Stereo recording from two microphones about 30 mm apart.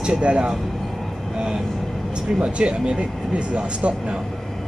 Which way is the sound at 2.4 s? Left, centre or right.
Right.